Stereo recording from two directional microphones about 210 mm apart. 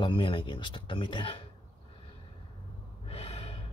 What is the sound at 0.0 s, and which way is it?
Speech, 25° left (ahead or behind).